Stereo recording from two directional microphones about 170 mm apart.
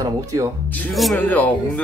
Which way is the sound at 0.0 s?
20° right (ahead or behind).